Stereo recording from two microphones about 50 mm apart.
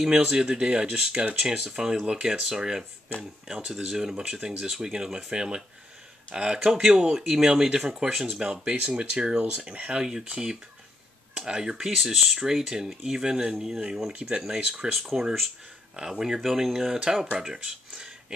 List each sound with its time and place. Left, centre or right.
0.3 s speech: centre
12.0 s speech: centre